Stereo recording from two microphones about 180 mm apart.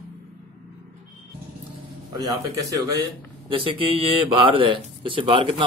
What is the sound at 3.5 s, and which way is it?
A man's voice, 30° right (ahead or behind).